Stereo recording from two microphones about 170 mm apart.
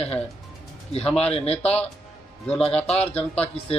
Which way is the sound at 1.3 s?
35° left (ahead or behind).